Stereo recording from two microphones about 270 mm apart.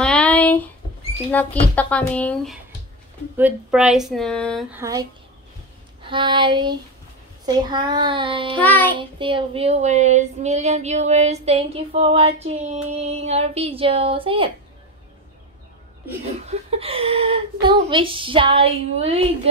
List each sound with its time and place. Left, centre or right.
0.0 s a sound: centre
1.3 s speech: centre
6.0 s a child's voice: centre
8.5 s child singing: centre
8.9 s child singing: centre
16.4 s child singing: right